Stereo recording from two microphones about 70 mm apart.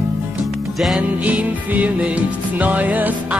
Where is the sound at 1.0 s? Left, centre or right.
Centre.